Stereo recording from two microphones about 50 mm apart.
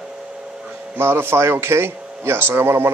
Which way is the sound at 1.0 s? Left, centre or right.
Right.